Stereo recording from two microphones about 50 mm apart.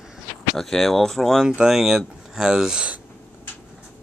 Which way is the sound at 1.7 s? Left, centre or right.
Centre.